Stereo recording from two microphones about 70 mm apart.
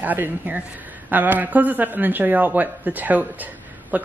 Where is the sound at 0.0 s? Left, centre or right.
Right.